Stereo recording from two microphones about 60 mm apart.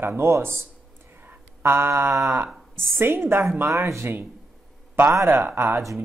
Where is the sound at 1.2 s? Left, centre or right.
Right.